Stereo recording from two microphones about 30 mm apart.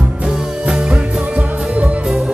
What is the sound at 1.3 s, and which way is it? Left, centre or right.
Music, right.